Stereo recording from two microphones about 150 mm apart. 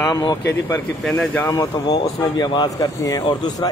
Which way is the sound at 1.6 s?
25° left (ahead or behind).